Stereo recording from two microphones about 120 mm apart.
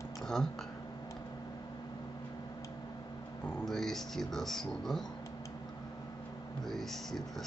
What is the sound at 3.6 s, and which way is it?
Speech, centre (ahead or behind).